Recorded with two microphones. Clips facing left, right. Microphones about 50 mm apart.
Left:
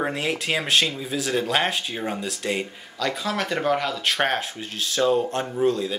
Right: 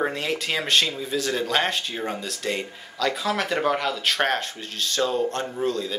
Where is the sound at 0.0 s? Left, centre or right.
Centre.